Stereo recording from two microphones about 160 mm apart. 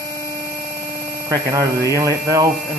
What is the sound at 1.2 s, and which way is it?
Speech, 20° right (ahead or behind).